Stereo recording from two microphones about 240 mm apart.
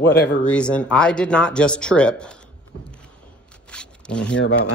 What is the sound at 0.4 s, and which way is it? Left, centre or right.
Speech, centre.